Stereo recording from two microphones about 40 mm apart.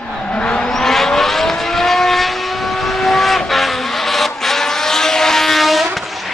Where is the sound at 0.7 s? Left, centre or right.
Centre.